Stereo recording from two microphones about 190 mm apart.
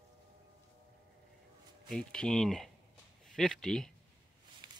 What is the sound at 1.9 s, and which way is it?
Speech, 5° left (ahead or behind).